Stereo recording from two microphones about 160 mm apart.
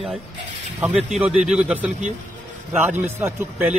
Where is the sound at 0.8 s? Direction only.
5° right (ahead or behind).